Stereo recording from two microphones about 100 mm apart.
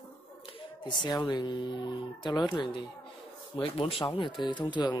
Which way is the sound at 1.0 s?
50° left (ahead or behind).